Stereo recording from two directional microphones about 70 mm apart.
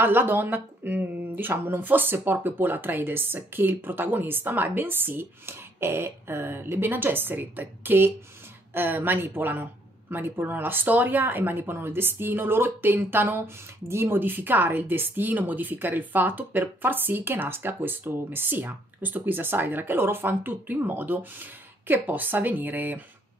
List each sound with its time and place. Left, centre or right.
0.0 s a woman's voice: right